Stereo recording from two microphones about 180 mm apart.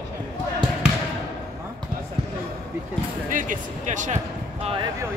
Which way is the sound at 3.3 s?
45° right (ahead or behind).